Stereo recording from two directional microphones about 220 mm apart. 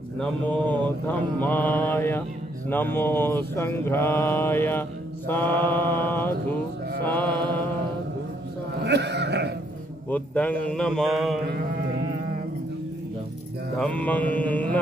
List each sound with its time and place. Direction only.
0.2 s mantra: 5° left (ahead or behind)
8.8 s speech: 50° right (ahead or behind)
10.0 s a man's voice: 5° left (ahead or behind)
13.7 s mantra: 5° left (ahead or behind)